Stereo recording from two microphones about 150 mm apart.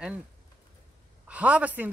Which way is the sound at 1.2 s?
10° right (ahead or behind).